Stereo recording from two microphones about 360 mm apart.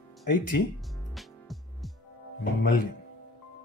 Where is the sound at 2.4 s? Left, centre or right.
Left.